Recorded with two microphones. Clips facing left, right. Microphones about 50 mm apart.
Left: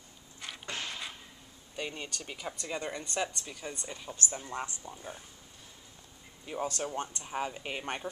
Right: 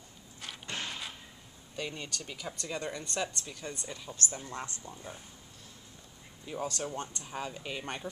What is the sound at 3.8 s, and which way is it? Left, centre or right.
Speech, centre.